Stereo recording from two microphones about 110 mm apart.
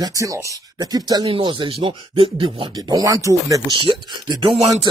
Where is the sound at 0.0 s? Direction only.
30° right (ahead or behind); by 2.7 s 55° right (ahead or behind).